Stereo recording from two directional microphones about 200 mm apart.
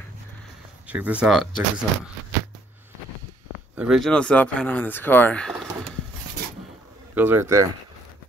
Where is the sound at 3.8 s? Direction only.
Centre (ahead or behind).